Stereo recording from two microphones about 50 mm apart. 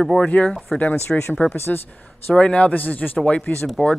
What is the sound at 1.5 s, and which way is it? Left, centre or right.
Speech, left.